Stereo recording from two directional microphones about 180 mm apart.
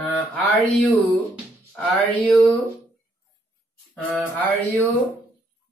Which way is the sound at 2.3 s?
5° left (ahead or behind).